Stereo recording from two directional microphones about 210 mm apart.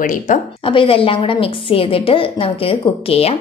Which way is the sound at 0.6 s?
25° left (ahead or behind).